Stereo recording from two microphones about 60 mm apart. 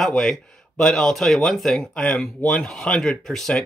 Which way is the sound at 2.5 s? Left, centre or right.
Centre.